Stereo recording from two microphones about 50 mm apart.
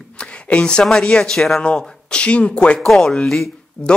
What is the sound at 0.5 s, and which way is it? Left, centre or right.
Speech, left.